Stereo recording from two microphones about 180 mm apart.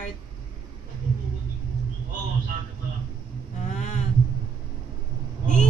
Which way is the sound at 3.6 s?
40° left (ahead or behind).